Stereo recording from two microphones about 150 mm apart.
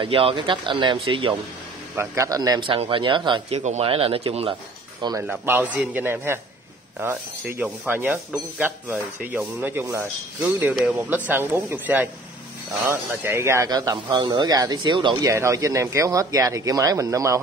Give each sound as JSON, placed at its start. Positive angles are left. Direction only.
{"t": 0.0, "sound": "a man's voice", "side_deg": -35}
{"t": 2.0, "sound": "a man's voice", "side_deg": -20}
{"t": 3.5, "sound": "a man's voice", "side_deg": -45}
{"t": 5.2, "sound": "speech", "side_deg": -10}
{"t": 15.2, "sound": "speech", "side_deg": -20}